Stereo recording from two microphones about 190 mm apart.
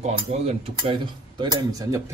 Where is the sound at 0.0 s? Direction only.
35° right (ahead or behind).